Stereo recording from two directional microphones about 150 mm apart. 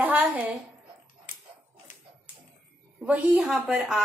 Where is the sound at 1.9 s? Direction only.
60° left (ahead or behind).